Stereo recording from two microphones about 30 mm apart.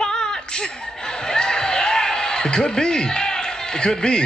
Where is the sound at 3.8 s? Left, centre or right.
Left.